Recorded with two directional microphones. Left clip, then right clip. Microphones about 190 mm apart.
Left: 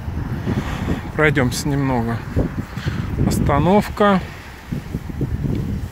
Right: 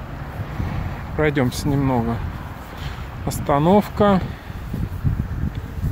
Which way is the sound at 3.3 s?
10° right (ahead or behind).